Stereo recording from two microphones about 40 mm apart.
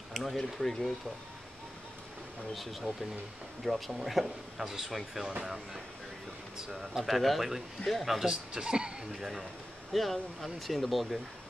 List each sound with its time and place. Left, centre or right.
0.1 s speech: centre
2.5 s speech: centre
6.7 s speech: centre
7.0 s speech: centre
8.3 s a man's voice: centre
9.1 s speech: centre